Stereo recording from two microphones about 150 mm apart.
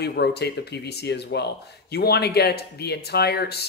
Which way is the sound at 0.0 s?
90° left.